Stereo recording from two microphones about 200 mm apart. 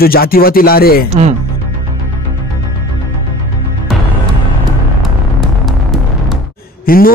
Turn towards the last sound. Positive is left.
turn(degrees=45)  # may be behind; listen again after turning